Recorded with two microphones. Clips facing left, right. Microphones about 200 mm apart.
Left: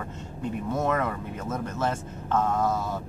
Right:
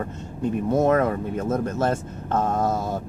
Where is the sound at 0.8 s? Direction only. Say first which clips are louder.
Right 7 dB; 45° right (ahead or behind).